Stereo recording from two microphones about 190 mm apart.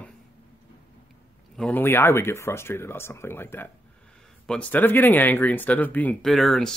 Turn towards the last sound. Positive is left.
turn(degrees=0)  # may be behind; listen again after turning